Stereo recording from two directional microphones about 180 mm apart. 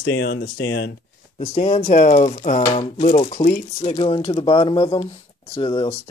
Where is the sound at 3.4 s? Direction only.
40° left (ahead or behind).